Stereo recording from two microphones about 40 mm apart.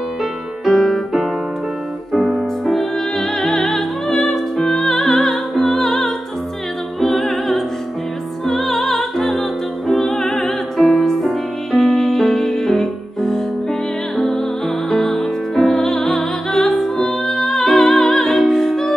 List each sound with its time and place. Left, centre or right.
0.7 s music: centre
2.1 s music: centre
15.5 s music: centre